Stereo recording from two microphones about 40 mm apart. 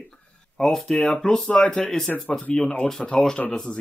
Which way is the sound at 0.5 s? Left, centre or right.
Centre.